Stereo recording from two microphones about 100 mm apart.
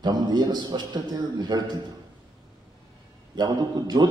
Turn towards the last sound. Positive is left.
turn(degrees=-45)  # may be behind; listen again after turning